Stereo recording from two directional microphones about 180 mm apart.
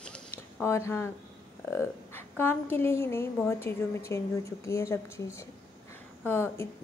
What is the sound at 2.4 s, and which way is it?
A woman's voice, 10° left (ahead or behind).